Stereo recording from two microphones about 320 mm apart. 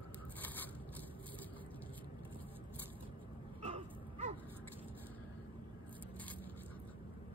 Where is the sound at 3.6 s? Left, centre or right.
Centre.